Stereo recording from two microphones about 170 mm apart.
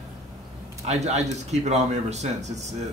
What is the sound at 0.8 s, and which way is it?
Speech, 40° right (ahead or behind).